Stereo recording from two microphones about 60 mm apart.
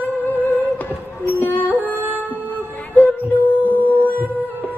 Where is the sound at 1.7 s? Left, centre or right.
Right.